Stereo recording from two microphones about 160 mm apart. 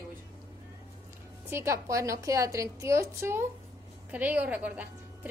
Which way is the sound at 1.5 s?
15° right (ahead or behind).